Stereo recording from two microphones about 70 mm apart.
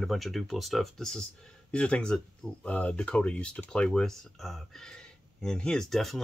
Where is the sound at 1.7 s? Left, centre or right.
Centre.